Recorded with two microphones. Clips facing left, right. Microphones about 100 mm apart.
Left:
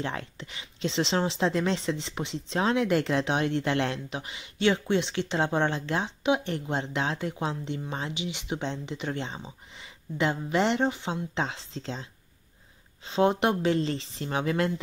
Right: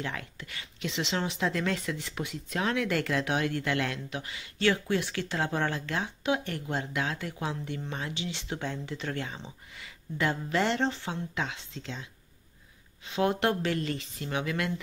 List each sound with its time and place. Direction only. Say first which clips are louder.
0.0 s speech: left 3 dB; 30° left (ahead or behind)
11.3 s speech: left 3 dB; 30° left (ahead or behind)